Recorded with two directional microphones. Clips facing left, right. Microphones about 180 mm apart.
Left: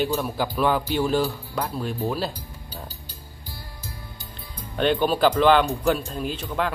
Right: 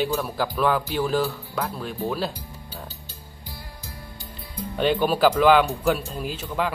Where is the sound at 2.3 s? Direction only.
25° right (ahead or behind).